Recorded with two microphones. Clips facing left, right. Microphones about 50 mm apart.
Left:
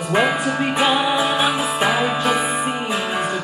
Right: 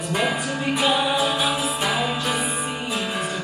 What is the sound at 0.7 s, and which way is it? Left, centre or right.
Music, left.